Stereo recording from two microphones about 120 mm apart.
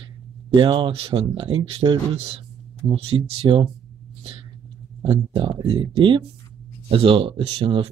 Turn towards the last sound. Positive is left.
turn(degrees=-45)  # may be behind; listen again after turning